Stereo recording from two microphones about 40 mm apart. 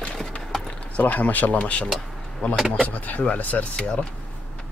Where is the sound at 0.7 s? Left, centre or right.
Left.